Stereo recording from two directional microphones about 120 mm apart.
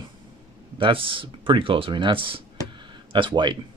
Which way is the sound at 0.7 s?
45° right (ahead or behind).